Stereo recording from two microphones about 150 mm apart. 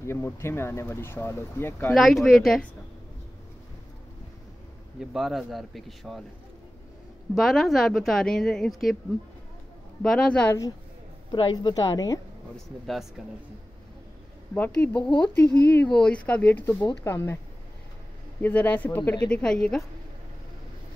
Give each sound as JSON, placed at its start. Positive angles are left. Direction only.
{"t": 0.0, "sound": "speech", "side_deg": 15}
{"t": 2.0, "sound": "a woman's voice", "side_deg": 0}
{"t": 5.1, "sound": "a woman's voice", "side_deg": 0}
{"t": 7.3, "sound": "a woman's voice", "side_deg": 0}
{"t": 10.0, "sound": "speech", "side_deg": 10}
{"t": 11.3, "sound": "a woman's voice", "side_deg": 35}
{"t": 14.5, "sound": "speech", "side_deg": 10}
{"t": 18.4, "sound": "a woman's voice", "side_deg": 10}